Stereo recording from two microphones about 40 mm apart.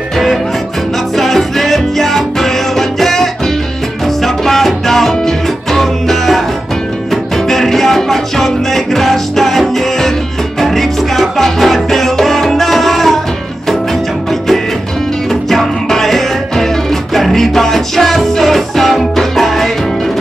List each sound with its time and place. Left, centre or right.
1.1 s music: centre
7.4 s music: centre
15.5 s music: centre